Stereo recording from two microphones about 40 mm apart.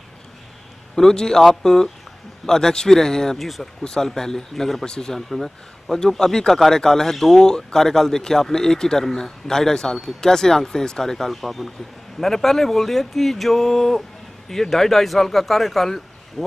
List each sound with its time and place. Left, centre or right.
0.9 s speech: centre
5.3 s a man's voice: centre